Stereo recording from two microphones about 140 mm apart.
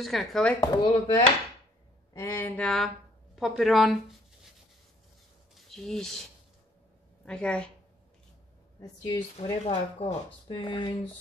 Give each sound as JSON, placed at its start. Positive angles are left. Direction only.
{"t": 0.0, "sound": "speech", "side_deg": 0}
{"t": 0.6, "sound": "speech", "side_deg": 35}
{"t": 2.1, "sound": "speech", "side_deg": 15}
{"t": 5.5, "sound": "speech", "side_deg": 0}
{"t": 7.2, "sound": "speech", "side_deg": 5}
{"t": 9.0, "sound": "speech", "side_deg": 30}
{"t": 9.7, "sound": "speech", "side_deg": 50}
{"t": 10.5, "sound": "speech", "side_deg": 35}